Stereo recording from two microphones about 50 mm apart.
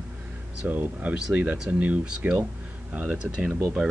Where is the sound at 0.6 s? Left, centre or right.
Right.